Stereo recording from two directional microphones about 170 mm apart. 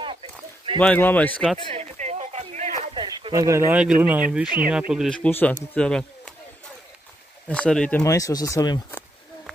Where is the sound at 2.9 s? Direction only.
25° right (ahead or behind).